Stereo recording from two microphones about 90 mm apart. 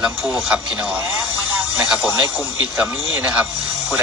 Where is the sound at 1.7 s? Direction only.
5° right (ahead or behind).